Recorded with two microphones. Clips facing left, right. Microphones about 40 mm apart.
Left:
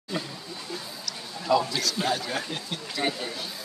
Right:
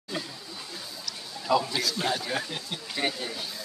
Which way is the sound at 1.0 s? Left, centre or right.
Centre.